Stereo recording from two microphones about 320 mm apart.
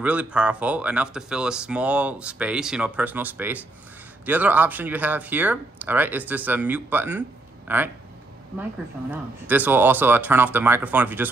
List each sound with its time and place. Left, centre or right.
0.0 s speech: centre
9.1 s speech: centre